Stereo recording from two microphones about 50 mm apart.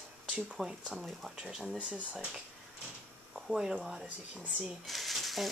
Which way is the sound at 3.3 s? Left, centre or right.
Centre.